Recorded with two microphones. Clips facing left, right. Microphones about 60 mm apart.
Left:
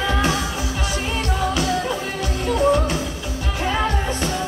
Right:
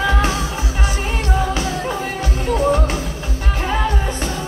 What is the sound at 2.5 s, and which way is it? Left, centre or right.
Music, right.